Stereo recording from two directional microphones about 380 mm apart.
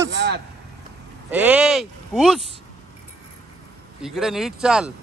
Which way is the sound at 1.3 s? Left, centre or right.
Centre.